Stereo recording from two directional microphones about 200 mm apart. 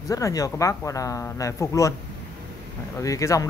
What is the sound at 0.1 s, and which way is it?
Speech, 15° left (ahead or behind).